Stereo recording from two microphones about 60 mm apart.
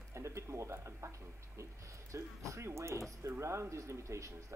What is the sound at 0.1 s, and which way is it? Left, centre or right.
Speech, right.